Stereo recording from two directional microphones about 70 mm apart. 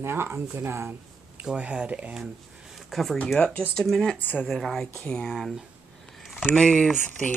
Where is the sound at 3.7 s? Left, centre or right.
Centre.